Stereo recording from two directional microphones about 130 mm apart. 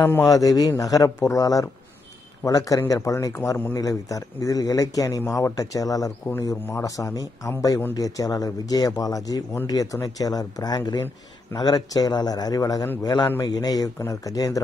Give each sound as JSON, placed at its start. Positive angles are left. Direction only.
{"t": 0.0, "sound": "a man's voice", "side_deg": 15}
{"t": 0.3, "sound": "a man's voice", "side_deg": 30}